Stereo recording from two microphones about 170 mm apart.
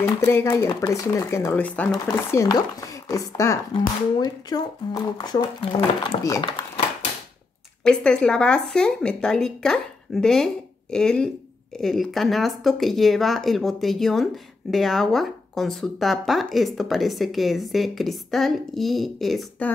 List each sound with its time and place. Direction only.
0.3 s speech: 15° left (ahead or behind); by 6.3 s 35° left (ahead or behind)
7.8 s speech: 5° left (ahead or behind)